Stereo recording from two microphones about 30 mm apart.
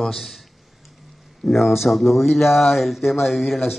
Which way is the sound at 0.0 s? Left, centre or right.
Centre.